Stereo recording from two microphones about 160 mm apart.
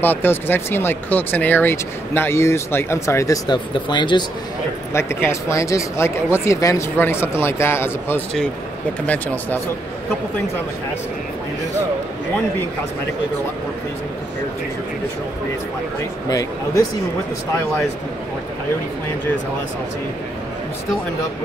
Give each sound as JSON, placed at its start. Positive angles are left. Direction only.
{"t": 0.0, "sound": "speech", "side_deg": 10}
{"t": 4.9, "sound": "speech", "side_deg": 15}
{"t": 16.3, "sound": "speech", "side_deg": 20}